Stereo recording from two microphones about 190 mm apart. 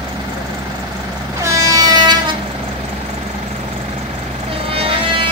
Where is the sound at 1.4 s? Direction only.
15° right (ahead or behind).